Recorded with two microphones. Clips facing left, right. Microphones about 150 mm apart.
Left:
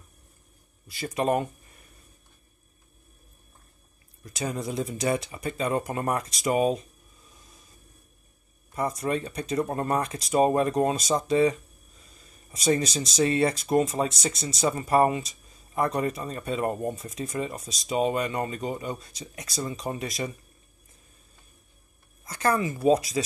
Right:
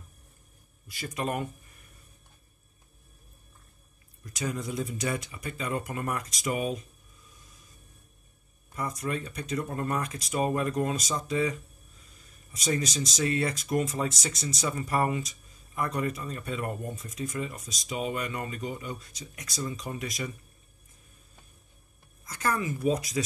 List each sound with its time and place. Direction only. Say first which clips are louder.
0.8 s speech: left 7 dB; 30° left (ahead or behind)
4.4 s speech: left 2 dB; 30° left (ahead or behind)
8.7 s speech: left 5 dB; 30° left (ahead or behind)
12.5 s speech: left 5 dB; 30° left (ahead or behind)
22.2 s speech: left 5 dB; 30° left (ahead or behind)